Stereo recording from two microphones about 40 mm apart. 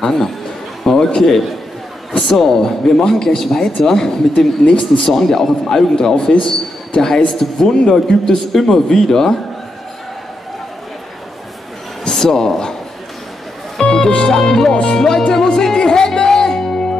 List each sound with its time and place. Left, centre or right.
0.0 s speech: centre
0.8 s a sound: centre
2.1 s speech: centre
12.0 s speech: centre
13.7 s speech: centre
15.3 s music: centre